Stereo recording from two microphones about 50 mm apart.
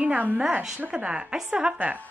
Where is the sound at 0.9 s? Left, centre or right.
Right.